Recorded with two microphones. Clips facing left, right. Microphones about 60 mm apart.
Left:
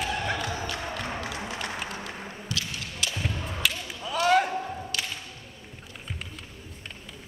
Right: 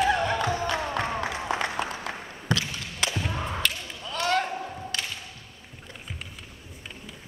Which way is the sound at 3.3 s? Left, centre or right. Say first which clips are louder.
Right 4 dB; right.